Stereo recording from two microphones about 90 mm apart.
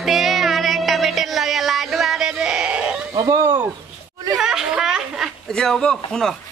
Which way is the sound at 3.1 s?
40° right (ahead or behind).